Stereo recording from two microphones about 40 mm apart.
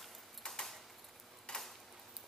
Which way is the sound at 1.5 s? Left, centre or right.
Centre.